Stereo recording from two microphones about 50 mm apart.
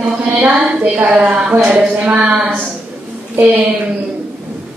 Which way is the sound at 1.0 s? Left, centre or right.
Right.